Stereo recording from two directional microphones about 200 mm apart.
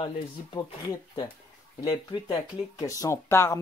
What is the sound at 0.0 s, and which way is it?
Speech, 25° left (ahead or behind).